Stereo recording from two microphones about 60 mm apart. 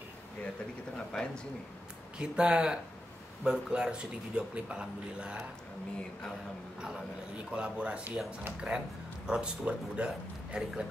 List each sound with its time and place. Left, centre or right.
0.9 s speech: centre
2.1 s a man's voice: centre
6.8 s a man's voice: centre